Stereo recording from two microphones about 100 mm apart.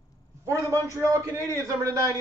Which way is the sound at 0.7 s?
30° right (ahead or behind).